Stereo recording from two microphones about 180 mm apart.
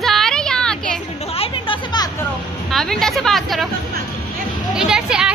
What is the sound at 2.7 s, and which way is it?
A woman's voice, centre (ahead or behind).